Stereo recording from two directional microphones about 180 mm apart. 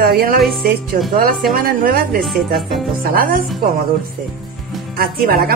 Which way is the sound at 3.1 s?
55° right (ahead or behind).